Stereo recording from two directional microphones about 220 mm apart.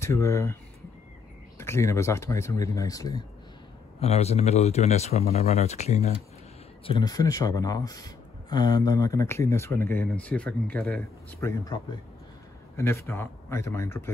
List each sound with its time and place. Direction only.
0.0 s speech: 10° left (ahead or behind)
1.6 s speech: 10° left (ahead or behind)
4.0 s speech: 30° left (ahead or behind)
6.9 s speech: 20° left (ahead or behind)